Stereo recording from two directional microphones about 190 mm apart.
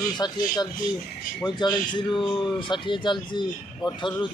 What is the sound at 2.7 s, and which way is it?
Music, 25° left (ahead or behind).